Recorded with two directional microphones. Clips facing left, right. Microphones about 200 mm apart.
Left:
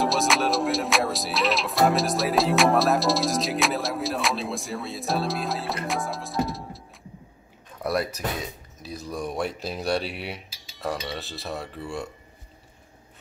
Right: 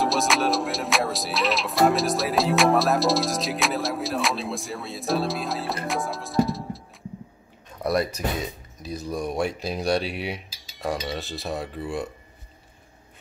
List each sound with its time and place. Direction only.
0.0 s music: centre (ahead or behind)
7.8 s speech: 5° left (ahead or behind)
8.8 s music: centre (ahead or behind)
10.8 s cutlery: 15° right (ahead or behind)
11.1 s music: centre (ahead or behind)